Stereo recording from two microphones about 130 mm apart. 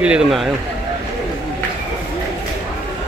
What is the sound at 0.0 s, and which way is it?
Speech, 5° right (ahead or behind).